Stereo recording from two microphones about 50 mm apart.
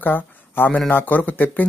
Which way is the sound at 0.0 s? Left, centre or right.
Left.